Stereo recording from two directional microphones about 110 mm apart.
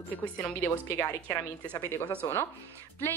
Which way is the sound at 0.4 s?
20° left (ahead or behind).